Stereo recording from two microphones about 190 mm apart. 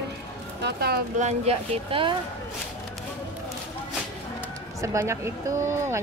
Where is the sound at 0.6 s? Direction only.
55° right (ahead or behind).